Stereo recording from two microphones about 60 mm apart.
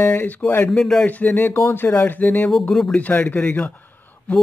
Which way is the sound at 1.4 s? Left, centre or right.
Left.